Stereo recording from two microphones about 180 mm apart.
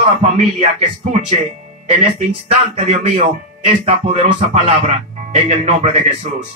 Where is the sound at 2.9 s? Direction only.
35° right (ahead or behind).